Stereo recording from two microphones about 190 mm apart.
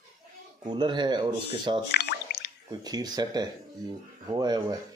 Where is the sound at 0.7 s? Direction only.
25° right (ahead or behind).